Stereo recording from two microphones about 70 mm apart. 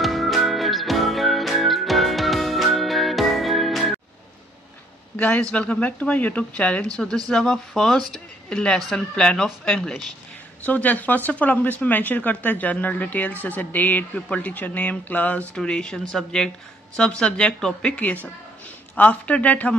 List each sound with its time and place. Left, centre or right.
0.0 s music: centre
5.1 s speech: left
7.2 s speech: centre
10.6 s speech: left
15.5 s speech: centre
18.0 s speech: left